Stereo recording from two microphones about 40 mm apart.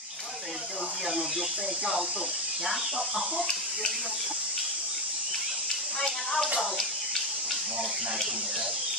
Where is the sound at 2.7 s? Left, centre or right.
Centre.